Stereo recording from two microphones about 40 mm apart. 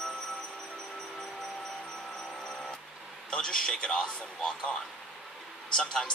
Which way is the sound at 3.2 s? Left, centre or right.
Left.